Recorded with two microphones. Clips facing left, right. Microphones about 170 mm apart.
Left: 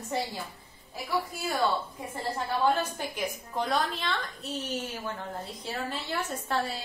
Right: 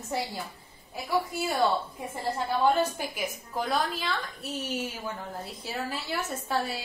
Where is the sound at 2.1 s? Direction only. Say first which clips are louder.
Right 2 dB; 10° right (ahead or behind).